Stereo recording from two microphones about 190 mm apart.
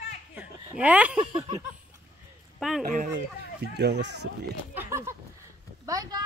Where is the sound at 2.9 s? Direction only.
45° right (ahead or behind).